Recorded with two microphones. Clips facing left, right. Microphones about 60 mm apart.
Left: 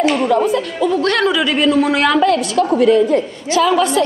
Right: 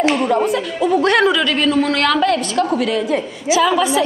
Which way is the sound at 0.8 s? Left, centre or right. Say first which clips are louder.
Right 3 dB; centre.